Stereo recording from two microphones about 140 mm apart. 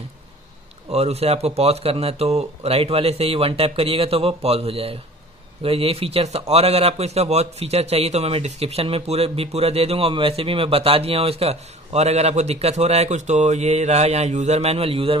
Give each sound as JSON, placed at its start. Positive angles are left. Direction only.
{"t": 0.9, "sound": "a man's voice", "side_deg": -50}